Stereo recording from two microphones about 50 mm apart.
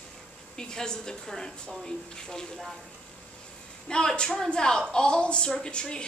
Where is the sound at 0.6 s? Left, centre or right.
Centre.